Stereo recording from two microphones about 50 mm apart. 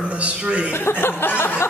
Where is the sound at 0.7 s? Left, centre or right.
Left.